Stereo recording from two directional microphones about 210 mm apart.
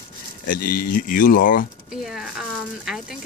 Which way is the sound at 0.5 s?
45° left (ahead or behind).